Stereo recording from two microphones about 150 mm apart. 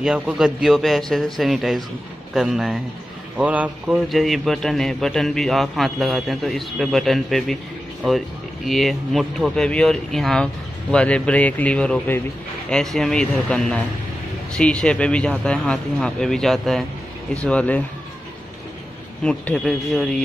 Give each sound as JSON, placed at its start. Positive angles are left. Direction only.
{"t": 0.0, "sound": "a man's voice", "side_deg": -5}
{"t": 8.6, "sound": "a man's voice", "side_deg": 0}
{"t": 19.2, "sound": "a man's voice", "side_deg": 5}